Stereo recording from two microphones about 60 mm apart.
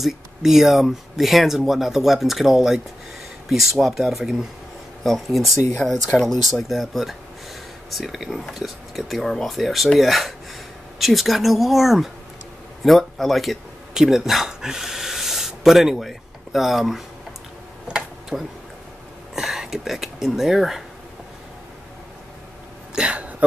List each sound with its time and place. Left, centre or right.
0.0 s speech: centre
18.3 s speech: centre
22.9 s speech: centre